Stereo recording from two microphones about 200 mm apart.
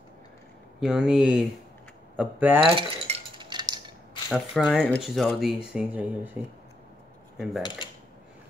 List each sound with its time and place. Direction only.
0.7 s speech: centre (ahead or behind)
2.7 s cutlery: 25° right (ahead or behind)
4.3 s speech: centre (ahead or behind)